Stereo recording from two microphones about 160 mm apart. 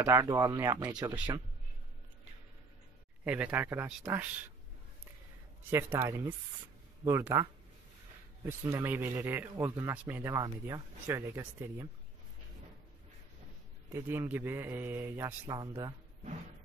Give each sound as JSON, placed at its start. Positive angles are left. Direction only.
{"t": 0.0, "sound": "speech", "side_deg": -20}
{"t": 0.9, "sound": "speech", "side_deg": -5}
{"t": 3.3, "sound": "speech", "side_deg": -10}
{"t": 5.7, "sound": "speech", "side_deg": -15}
{"t": 8.5, "sound": "speech", "side_deg": -15}
{"t": 13.8, "sound": "speech", "side_deg": -15}